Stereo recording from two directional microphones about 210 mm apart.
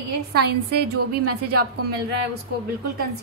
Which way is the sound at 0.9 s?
90° right.